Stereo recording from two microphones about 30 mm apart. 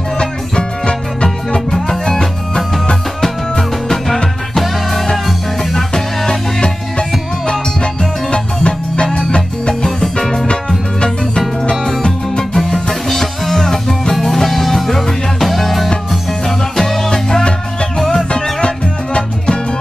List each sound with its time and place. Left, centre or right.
0.2 s music: left
5.7 s music: centre
6.2 s music: left
10.1 s music: centre
11.0 s music: left
12.5 s music: centre
14.2 s music: centre
16.4 s music: centre
17.3 s music: left
19.1 s music: left